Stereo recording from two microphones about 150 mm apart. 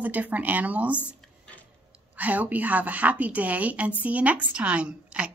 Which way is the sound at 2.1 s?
10° right (ahead or behind).